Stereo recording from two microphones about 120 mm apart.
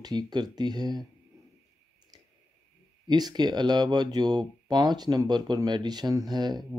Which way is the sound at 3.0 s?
35° right (ahead or behind).